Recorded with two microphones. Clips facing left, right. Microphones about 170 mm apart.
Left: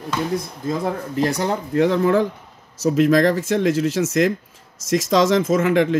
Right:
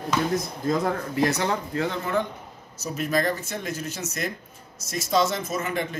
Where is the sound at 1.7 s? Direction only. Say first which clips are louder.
Left 10 dB; 80° left.